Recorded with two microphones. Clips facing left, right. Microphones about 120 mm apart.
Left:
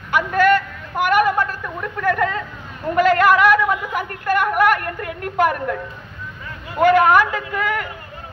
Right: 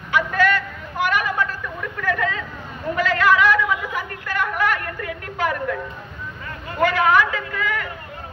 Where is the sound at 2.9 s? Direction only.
50° left (ahead or behind).